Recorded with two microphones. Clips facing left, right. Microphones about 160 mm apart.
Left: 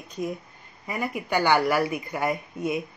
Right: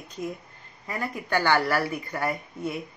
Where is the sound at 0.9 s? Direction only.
15° left (ahead or behind).